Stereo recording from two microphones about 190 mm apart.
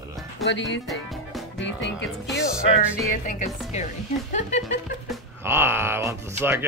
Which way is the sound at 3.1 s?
45° left (ahead or behind).